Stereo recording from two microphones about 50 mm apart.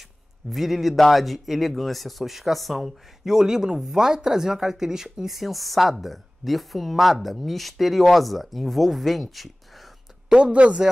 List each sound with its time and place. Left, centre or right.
0.5 s speech: centre
10.3 s speech: right